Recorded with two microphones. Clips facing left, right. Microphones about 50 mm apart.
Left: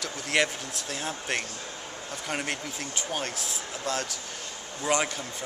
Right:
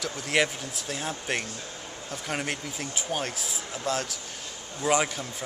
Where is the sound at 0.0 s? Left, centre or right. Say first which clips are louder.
Right 1 dB; centre.